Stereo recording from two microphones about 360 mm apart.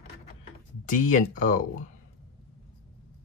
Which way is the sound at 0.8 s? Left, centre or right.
Left.